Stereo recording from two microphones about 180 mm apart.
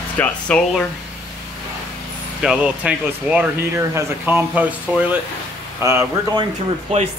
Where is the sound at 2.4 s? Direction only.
5° right (ahead or behind).